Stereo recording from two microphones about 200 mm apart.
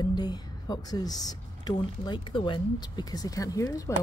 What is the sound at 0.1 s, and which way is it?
Speech, 20° left (ahead or behind).